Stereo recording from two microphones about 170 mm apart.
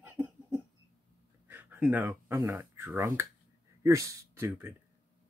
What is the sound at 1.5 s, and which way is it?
Speech, 10° right (ahead or behind).